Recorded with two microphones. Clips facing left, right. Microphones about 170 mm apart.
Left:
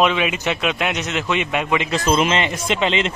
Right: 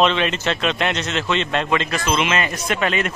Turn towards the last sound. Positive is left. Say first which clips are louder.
# left 1 dB
turn(degrees=20)  # may be behind; listen again after turning